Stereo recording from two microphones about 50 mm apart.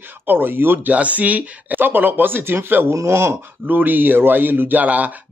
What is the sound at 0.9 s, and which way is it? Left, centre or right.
A man's voice, right.